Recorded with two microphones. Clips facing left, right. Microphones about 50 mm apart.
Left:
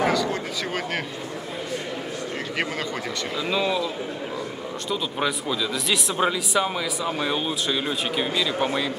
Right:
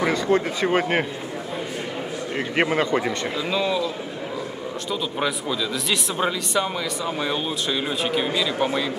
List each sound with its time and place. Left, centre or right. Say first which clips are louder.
0.0 s a man's voice: right 3 dB; right
2.5 s a man's voice: right 9 dB; right
3.4 s speech: even; centre
5.2 s speech: even; centre